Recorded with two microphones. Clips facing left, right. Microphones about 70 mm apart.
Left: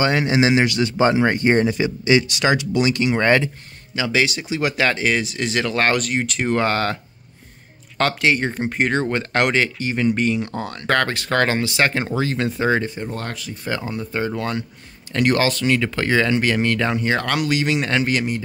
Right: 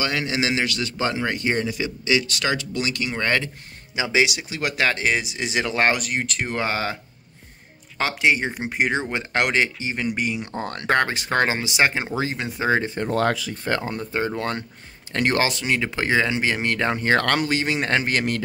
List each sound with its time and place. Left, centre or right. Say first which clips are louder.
0.0 s a man's voice: left 6 dB; left
2.3 s a man's voice: left 6 dB; centre
3.9 s speech: left 1 dB; centre
4.5 s speech: left 3 dB; centre
5.9 s speech: left 4 dB; centre
8.0 s speech: left 2 dB; centre
12.6 s speech: even; right
13.7 s speech: even; right